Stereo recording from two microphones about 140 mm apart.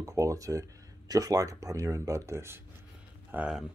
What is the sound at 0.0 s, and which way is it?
Speech, 20° right (ahead or behind).